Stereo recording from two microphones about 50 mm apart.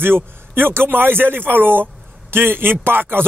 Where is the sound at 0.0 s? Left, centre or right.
Right.